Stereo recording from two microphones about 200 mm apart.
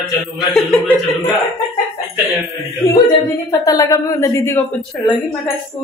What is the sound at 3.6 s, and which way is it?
Speech, 15° left (ahead or behind).